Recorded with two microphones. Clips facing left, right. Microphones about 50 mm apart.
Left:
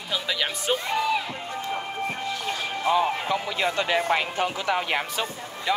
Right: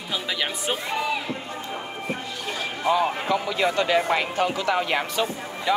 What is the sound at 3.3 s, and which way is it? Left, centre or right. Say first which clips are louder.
Speech: right 2 dB; left.